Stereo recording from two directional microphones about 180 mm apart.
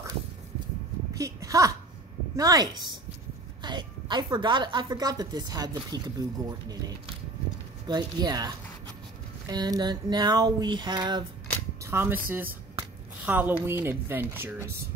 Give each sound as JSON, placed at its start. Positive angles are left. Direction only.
{"t": 1.1, "sound": "a sound", "side_deg": -20}
{"t": 2.3, "sound": "a woman's voice", "side_deg": -20}
{"t": 7.8, "sound": "a woman's voice", "side_deg": -25}
{"t": 11.8, "sound": "a woman's voice", "side_deg": -15}